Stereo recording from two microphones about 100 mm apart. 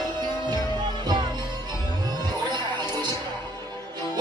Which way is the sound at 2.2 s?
50° right (ahead or behind).